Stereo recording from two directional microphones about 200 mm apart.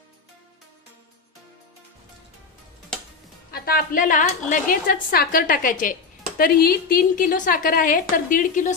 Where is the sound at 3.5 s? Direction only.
50° left (ahead or behind).